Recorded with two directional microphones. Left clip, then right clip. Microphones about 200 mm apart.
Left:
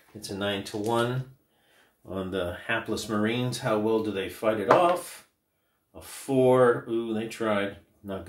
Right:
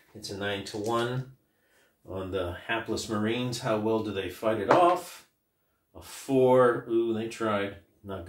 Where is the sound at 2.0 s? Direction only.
45° left (ahead or behind).